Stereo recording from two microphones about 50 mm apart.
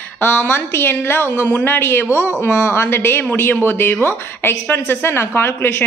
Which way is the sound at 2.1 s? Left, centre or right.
Left.